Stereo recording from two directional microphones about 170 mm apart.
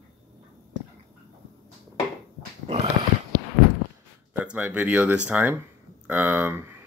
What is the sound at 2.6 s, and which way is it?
Dog, 40° right (ahead or behind).